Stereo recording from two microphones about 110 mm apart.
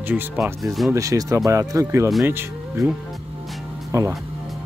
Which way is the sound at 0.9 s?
30° right (ahead or behind).